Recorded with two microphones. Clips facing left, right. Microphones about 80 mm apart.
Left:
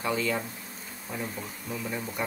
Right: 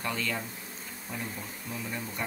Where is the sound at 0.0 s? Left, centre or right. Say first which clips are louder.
Left 5 dB; centre.